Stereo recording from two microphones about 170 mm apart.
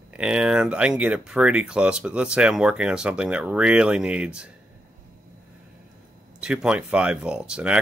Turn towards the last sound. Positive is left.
turn(degrees=-5)  # may be behind; listen again after turning